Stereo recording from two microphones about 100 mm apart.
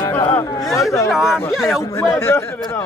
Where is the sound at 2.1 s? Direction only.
25° left (ahead or behind).